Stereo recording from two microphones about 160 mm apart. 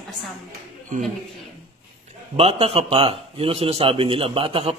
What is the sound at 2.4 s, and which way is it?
A man's voice, 35° right (ahead or behind).